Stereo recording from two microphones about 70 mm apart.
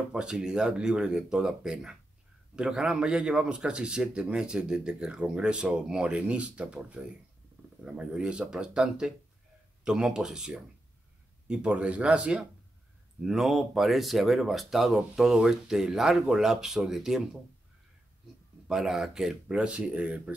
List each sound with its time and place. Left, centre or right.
0.1 s a man's voice: centre
18.7 s a man's voice: centre